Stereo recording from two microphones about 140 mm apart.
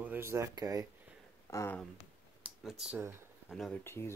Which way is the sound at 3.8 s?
15° left (ahead or behind).